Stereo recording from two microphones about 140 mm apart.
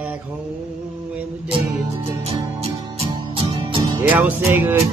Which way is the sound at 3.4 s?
40° right (ahead or behind).